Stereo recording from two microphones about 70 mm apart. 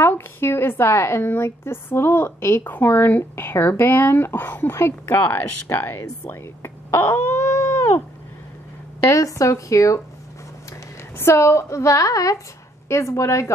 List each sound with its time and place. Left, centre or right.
0.0 s a woman's voice: left
6.6 s wail: left
9.0 s a woman's voice: left
11.1 s a woman's voice: left
12.8 s a woman's voice: left